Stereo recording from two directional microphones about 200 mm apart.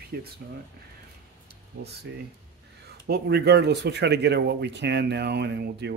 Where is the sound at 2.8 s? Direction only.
55° right (ahead or behind).